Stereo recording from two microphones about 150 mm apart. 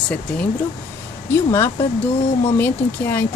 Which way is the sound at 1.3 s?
15° left (ahead or behind).